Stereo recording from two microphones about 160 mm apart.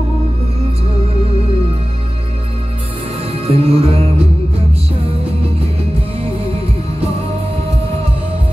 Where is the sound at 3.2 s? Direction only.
40° right (ahead or behind).